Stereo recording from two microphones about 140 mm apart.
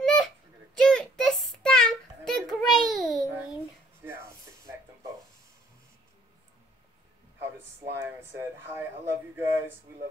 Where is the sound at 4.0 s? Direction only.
15° right (ahead or behind).